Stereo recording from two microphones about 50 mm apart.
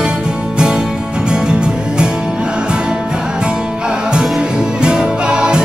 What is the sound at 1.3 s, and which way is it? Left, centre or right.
Music, centre.